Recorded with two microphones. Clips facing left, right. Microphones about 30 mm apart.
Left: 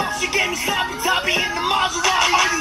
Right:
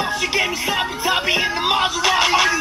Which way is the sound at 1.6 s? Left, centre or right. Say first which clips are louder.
Right 1 dB; right.